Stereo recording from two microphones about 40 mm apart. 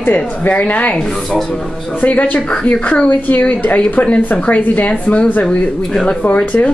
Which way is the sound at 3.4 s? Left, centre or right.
Left.